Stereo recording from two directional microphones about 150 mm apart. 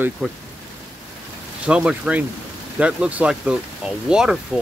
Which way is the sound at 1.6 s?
5° right (ahead or behind).